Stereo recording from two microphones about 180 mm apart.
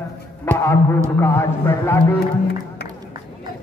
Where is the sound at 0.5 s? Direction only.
15° left (ahead or behind).